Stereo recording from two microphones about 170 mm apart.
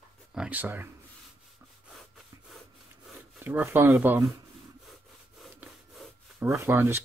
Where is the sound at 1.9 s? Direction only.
Centre (ahead or behind).